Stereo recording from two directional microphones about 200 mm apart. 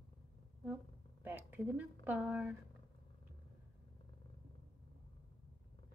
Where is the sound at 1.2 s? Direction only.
10° right (ahead or behind).